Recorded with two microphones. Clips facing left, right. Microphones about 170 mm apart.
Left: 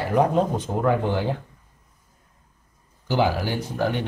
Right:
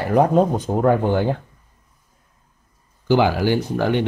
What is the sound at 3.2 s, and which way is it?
Speech, 75° right (ahead or behind).